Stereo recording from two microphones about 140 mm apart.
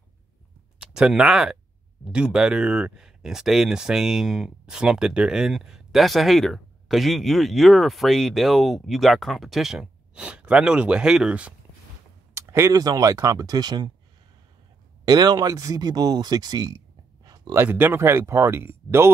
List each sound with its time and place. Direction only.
0.7 s speech: 5° right (ahead or behind)
12.4 s speech: 20° right (ahead or behind)
15.0 s speech: 30° right (ahead or behind)
17.6 s speech: 15° right (ahead or behind)